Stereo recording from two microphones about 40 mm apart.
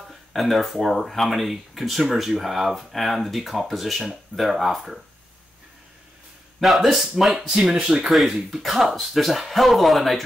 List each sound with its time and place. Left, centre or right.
0.1 s speech: centre
6.6 s speech: centre
7.3 s speech: right
8.0 s speech: centre